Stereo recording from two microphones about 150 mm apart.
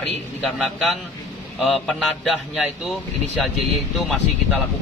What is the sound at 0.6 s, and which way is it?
Speech, centre (ahead or behind).